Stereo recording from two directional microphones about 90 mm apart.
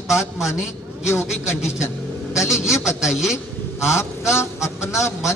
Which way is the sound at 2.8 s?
5° right (ahead or behind).